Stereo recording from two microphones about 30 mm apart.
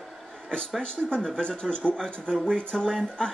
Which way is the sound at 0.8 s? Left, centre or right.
Left.